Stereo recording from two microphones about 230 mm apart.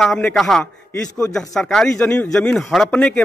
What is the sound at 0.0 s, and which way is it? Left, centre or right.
A man's voice, centre.